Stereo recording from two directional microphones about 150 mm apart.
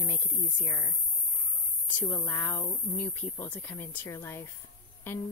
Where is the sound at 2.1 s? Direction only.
15° left (ahead or behind).